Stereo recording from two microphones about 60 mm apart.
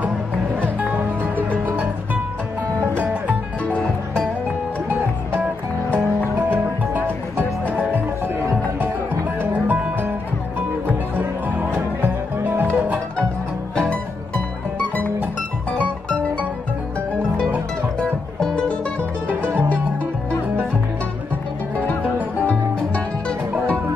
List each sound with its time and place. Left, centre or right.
0.6 s music: right
3.0 s music: right
6.5 s music: right
13.7 s music: centre
15.8 s music: left
18.0 s music: centre